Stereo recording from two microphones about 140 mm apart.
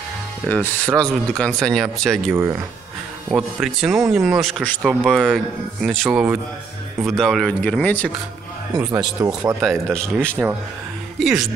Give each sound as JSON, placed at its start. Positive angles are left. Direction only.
{"t": 0.5, "sound": "speech", "side_deg": 10}
{"t": 2.3, "sound": "speech", "side_deg": -20}
{"t": 3.3, "sound": "speech", "side_deg": -5}
{"t": 8.7, "sound": "speech", "side_deg": -25}